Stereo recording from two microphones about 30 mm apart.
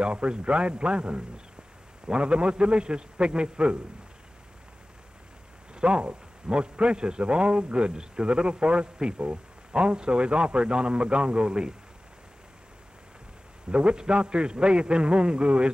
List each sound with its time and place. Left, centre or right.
0.0 s a man's voice: right
5.8 s a man's voice: right
13.7 s a man's voice: right